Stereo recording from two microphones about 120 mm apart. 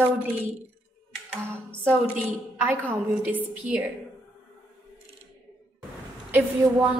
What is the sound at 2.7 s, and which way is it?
Speech, 15° right (ahead or behind).